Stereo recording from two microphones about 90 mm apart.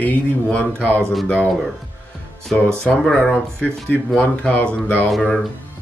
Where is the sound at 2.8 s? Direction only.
10° left (ahead or behind).